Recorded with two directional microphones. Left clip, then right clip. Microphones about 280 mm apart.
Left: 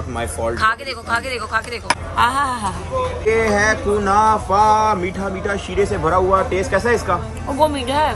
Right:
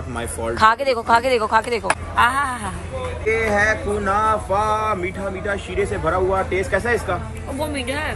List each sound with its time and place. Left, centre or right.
0.2 s speech: centre
2.2 s a woman's voice: centre
3.3 s a sound: left
7.5 s speech: centre